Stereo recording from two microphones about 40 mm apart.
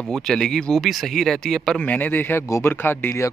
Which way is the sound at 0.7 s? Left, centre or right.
Centre.